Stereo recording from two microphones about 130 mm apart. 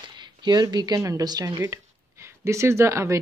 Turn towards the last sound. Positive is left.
turn(degrees=-20)  # may be behind; listen again after turning